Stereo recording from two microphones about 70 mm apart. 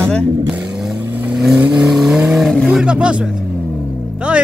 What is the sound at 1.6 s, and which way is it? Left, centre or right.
Speech, centre.